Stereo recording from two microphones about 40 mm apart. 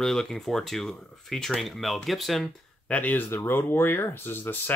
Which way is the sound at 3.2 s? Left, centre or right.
Left.